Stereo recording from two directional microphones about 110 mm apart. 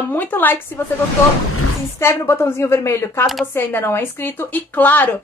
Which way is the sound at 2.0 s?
25° left (ahead or behind).